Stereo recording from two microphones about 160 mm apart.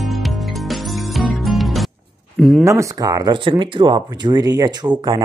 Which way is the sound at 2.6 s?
20° right (ahead or behind).